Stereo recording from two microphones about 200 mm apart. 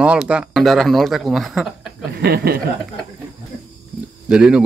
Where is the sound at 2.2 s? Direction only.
50° right (ahead or behind).